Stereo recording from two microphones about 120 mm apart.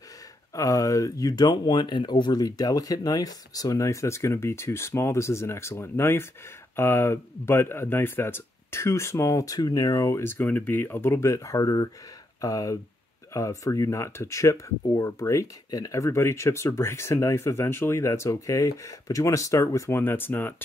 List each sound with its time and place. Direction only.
0.6 s speech: 25° left (ahead or behind)